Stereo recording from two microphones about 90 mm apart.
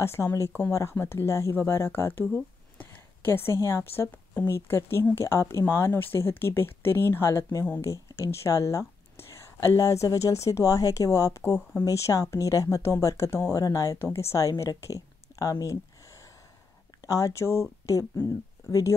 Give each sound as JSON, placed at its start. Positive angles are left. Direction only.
{"t": 0.0, "sound": "a woman's voice", "side_deg": 30}
{"t": 17.0, "sound": "speech", "side_deg": 40}